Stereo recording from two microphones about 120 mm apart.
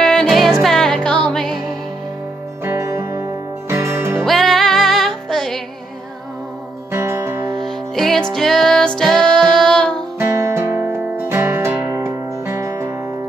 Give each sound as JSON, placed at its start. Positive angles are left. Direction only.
{"t": 0.0, "sound": "music", "side_deg": 5}
{"t": 2.6, "sound": "music", "side_deg": -20}
{"t": 4.2, "sound": "music", "side_deg": 0}
{"t": 6.9, "sound": "music", "side_deg": -20}
{"t": 7.6, "sound": "music", "side_deg": 0}
{"t": 10.1, "sound": "music", "side_deg": -20}